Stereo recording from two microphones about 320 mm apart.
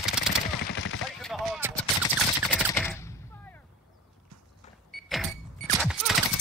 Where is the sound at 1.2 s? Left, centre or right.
Centre.